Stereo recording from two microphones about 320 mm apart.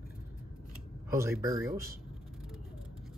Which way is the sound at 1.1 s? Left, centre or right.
Centre.